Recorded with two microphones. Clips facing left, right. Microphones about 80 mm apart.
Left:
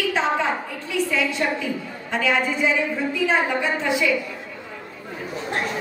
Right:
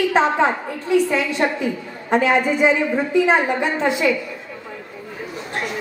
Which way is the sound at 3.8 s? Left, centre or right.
Right.